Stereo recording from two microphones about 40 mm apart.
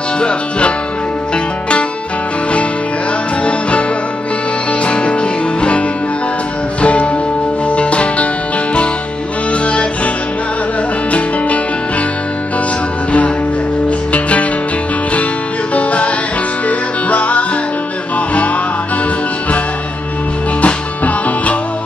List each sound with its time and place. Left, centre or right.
0.2 s music: left
4.8 s music: left
9.5 s music: left
11.1 s music: left
13.8 s music: left
15.7 s music: left
20.6 s music: left